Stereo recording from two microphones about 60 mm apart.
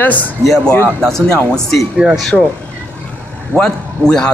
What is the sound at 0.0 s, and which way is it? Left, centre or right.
Speech, left.